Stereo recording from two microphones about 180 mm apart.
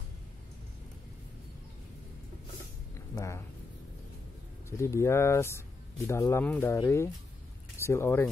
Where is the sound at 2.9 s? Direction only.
15° left (ahead or behind).